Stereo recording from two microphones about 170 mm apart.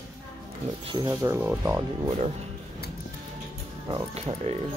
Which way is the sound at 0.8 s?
25° right (ahead or behind).